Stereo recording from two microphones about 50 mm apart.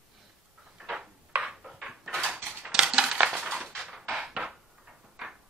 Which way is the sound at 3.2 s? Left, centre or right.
Right.